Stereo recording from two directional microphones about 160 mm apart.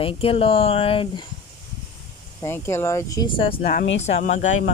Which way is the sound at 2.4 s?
15° left (ahead or behind).